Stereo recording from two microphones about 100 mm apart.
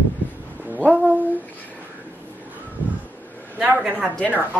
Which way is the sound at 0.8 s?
15° left (ahead or behind).